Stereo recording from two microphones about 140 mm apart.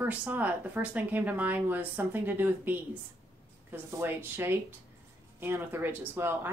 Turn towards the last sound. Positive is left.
turn(degrees=-15)  # may be behind; listen again after turning